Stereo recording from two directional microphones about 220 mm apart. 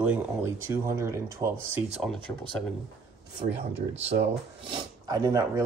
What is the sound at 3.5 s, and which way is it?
Speech, 55° right (ahead or behind).